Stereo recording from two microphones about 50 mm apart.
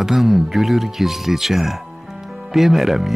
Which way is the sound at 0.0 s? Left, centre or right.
Centre.